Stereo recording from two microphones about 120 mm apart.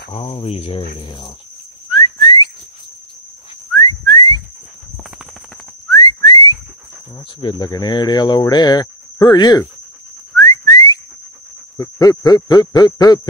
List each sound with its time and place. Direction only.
0.1 s speech: 45° left (ahead or behind)
1.9 s whistling: 40° left (ahead or behind)
3.7 s whistling: 35° left (ahead or behind)
5.9 s whistling: 35° left (ahead or behind)
7.3 s speech: 40° left (ahead or behind)
10.3 s whistling: 30° left (ahead or behind)
12.0 s speech: 30° left (ahead or behind)